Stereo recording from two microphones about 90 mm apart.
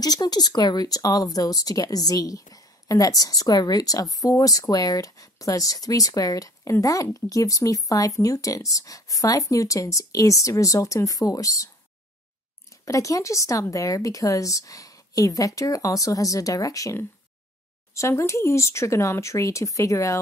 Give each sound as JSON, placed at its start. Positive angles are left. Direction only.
{"t": 0.0, "sound": "speech", "side_deg": 45}
{"t": 12.8, "sound": "speech", "side_deg": 35}